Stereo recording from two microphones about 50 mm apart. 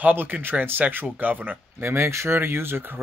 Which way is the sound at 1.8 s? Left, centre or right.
Right.